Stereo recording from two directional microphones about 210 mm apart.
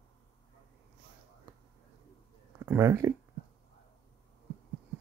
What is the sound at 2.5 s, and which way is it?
Speech, 15° right (ahead or behind).